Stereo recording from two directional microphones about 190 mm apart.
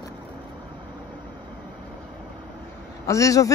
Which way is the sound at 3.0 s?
15° left (ahead or behind).